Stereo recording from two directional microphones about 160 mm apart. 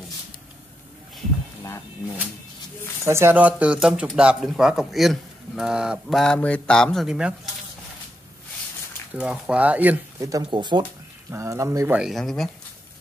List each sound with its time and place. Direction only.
1.6 s speech: 20° left (ahead or behind)
3.1 s speech: 15° right (ahead or behind)
9.1 s speech: 5° right (ahead or behind)
10.2 s speech: 25° right (ahead or behind)
10.8 s speech: 15° right (ahead or behind)
12.0 s speech: centre (ahead or behind)